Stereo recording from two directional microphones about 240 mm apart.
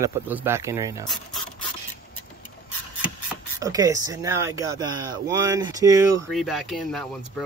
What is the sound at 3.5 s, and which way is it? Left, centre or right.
Speech, centre.